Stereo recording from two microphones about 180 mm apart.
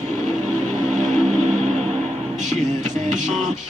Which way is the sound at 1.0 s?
40° right (ahead or behind).